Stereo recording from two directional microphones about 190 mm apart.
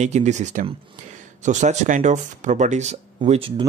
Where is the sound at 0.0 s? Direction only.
40° right (ahead or behind).